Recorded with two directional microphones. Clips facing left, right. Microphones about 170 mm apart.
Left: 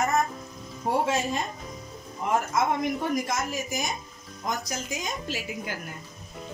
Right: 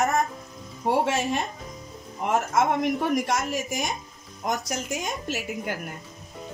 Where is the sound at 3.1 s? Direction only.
70° right (ahead or behind).